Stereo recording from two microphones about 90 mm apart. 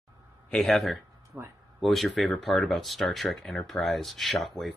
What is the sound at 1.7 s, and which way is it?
Speech, centre (ahead or behind).